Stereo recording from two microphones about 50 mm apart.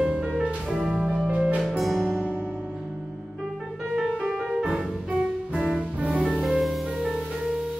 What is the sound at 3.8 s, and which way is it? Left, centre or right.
Music, centre.